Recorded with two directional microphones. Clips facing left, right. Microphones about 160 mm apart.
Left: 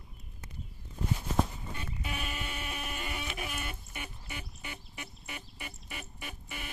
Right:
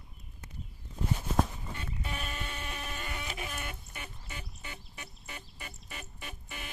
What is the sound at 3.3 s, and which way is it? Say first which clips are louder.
Bird: left 1 dB; 10° left (ahead or behind).